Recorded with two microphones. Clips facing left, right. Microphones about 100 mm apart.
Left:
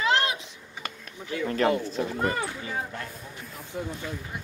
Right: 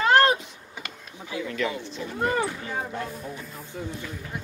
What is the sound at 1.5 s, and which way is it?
Speech, 40° left (ahead or behind).